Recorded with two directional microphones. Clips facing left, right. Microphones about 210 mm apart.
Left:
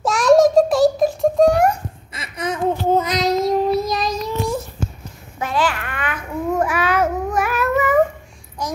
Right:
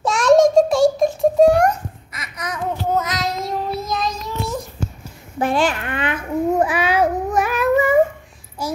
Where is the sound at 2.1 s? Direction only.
30° left (ahead or behind).